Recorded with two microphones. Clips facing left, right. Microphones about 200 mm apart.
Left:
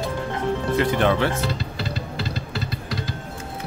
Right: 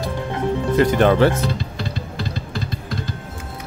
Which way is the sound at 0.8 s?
40° right (ahead or behind).